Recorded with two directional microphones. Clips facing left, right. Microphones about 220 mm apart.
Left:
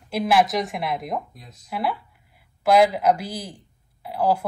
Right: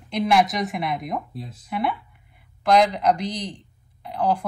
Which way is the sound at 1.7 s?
Centre (ahead or behind).